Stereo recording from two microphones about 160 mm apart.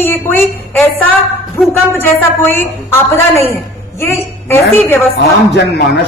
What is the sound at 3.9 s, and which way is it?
A woman's voice, 15° left (ahead or behind).